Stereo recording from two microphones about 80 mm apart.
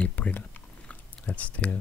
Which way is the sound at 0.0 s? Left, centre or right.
Centre.